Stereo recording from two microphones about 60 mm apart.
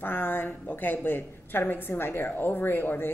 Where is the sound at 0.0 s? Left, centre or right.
Left.